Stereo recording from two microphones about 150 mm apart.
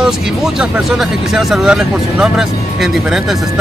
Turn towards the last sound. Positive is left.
turn(degrees=-5)  # may be behind; listen again after turning